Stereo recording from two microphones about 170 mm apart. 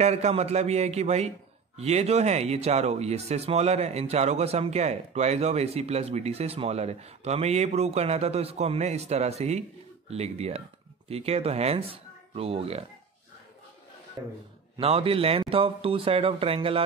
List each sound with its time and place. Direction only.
0.0 s speech: 40° right (ahead or behind)
14.2 s speech: 15° right (ahead or behind)
14.8 s speech: 35° right (ahead or behind)